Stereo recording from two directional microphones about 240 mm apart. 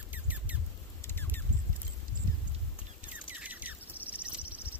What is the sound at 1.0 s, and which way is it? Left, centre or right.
Rodents, centre.